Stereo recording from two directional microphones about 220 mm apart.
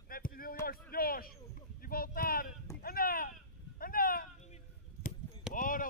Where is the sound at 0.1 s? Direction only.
40° left (ahead or behind).